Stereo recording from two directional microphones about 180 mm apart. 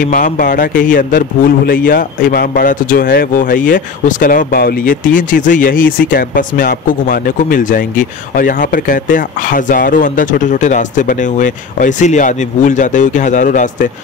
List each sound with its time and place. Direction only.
0.0 s speech: 50° left (ahead or behind)